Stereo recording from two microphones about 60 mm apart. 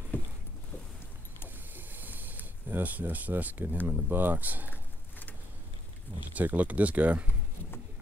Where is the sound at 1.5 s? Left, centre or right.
Right.